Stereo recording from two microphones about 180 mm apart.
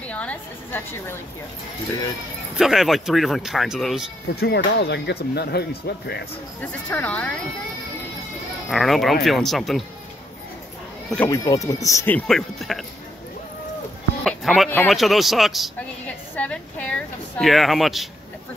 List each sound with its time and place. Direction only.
0.0 s a sound: 5° left (ahead or behind)
2.5 s a woman's voice: centre (ahead or behind)
4.4 s speech: 65° left (ahead or behind)
6.6 s speech: 10° left (ahead or behind)
8.6 s a woman's voice: centre (ahead or behind)
11.2 s speech: 20° left (ahead or behind); by 12.8 s centre (ahead or behind)
14.2 s a sound: centre (ahead or behind)
14.9 s a woman's voice: centre (ahead or behind)